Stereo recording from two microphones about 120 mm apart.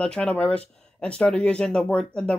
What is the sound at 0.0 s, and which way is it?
Speech, 5° left (ahead or behind).